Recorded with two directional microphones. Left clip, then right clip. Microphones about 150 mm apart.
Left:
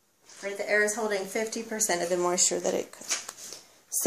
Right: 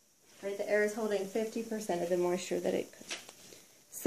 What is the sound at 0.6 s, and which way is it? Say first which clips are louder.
A woman's voice: left 5 dB; 5° left (ahead or behind).